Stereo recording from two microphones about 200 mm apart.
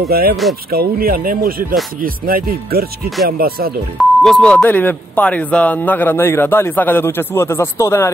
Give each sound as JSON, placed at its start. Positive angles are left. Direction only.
{"t": 0.0, "sound": "speech", "side_deg": -50}
{"t": 4.0, "sound": "speech", "side_deg": 0}